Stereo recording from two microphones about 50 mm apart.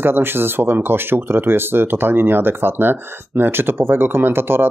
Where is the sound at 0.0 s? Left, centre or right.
Right.